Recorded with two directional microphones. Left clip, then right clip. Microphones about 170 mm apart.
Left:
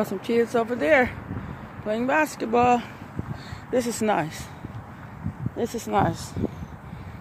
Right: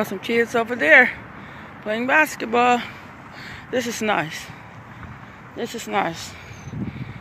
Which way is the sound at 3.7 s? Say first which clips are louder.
Right 1 dB; 20° left (ahead or behind).